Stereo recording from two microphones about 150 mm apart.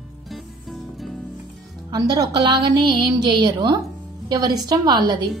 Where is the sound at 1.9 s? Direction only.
25° right (ahead or behind).